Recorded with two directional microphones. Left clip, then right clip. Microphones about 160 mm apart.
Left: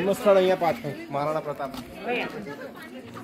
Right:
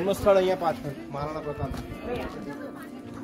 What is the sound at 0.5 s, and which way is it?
Speech, 55° left (ahead or behind).